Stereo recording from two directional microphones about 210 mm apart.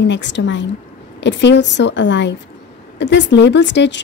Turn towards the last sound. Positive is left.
turn(degrees=55)  # may be behind; listen again after turning